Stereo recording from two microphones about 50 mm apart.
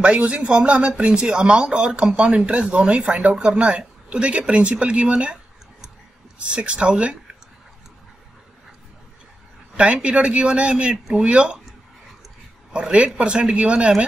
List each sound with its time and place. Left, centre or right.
0.0 s speech: right
10.0 s speech: right
12.7 s speech: centre